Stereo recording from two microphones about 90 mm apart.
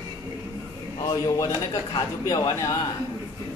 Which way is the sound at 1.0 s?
40° left (ahead or behind).